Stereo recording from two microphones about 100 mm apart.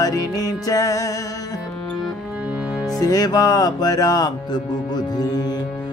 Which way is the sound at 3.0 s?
40° left (ahead or behind).